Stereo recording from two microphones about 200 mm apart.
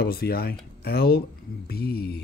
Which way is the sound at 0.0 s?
50° left (ahead or behind).